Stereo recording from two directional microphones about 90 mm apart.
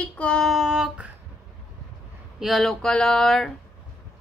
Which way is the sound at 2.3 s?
5° right (ahead or behind).